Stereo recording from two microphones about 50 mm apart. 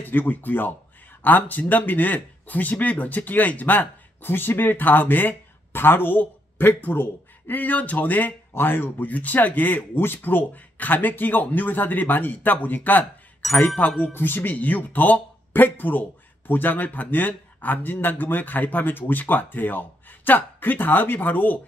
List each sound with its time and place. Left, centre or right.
0.1 s speech: left
14.0 s speech: left